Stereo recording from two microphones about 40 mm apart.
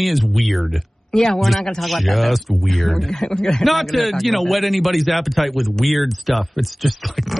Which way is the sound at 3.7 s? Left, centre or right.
Centre.